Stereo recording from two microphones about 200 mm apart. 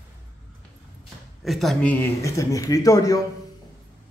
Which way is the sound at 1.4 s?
Centre (ahead or behind).